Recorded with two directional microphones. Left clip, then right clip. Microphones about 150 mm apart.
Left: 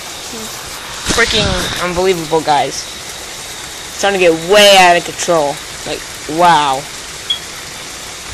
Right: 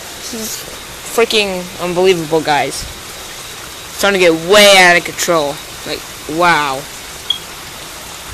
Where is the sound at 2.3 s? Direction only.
20° right (ahead or behind).